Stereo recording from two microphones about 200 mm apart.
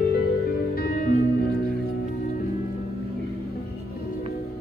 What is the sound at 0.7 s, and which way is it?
Music, 50° left (ahead or behind).